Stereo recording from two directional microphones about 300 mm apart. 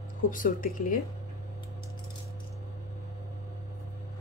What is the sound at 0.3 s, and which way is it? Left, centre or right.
Speech, left.